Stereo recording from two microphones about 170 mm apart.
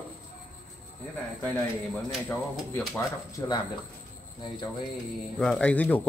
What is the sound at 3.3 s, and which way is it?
Speech, 25° left (ahead or behind).